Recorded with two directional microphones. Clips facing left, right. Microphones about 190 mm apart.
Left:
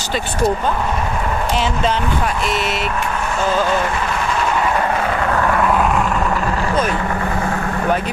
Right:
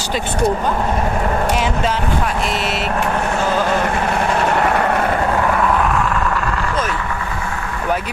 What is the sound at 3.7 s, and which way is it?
Vehicle, 55° right (ahead or behind).